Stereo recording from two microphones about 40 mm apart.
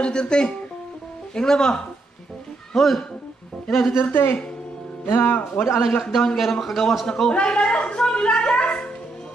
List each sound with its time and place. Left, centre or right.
0.0 s a man's voice: left; by 3.0 s centre
3.9 s a woman's voice: left
5.0 s speech: left
6.1 s a man's voice: centre; by 8.8 s left